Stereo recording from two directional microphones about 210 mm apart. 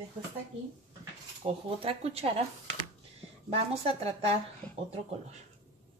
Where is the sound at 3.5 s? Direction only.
30° right (ahead or behind).